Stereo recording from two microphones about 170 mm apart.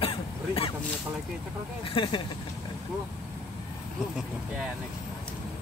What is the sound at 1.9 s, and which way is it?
Speech, 30° left (ahead or behind).